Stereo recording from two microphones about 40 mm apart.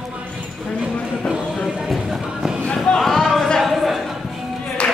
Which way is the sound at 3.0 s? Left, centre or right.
Centre.